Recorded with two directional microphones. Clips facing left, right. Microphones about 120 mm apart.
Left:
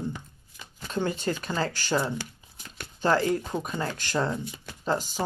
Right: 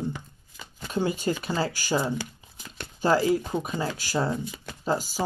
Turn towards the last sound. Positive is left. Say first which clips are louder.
# right 1 dB
turn(degrees=-5)  # may be behind; listen again after turning